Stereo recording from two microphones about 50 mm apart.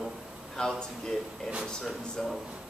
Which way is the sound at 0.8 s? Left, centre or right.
Centre.